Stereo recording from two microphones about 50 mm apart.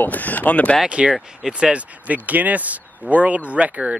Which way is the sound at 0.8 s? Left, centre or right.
Right.